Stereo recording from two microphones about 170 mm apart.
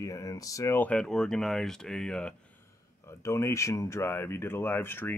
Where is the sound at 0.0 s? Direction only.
20° left (ahead or behind); by 2.3 s 5° left (ahead or behind).